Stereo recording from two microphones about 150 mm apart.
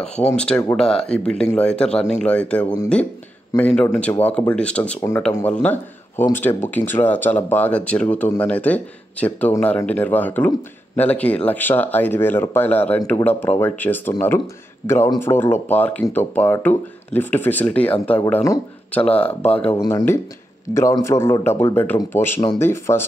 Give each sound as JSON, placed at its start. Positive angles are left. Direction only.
{"t": 0.7, "sound": "a man's voice", "side_deg": 5}